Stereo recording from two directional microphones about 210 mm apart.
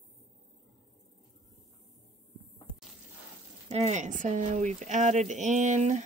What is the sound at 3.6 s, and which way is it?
Speech, 35° right (ahead or behind).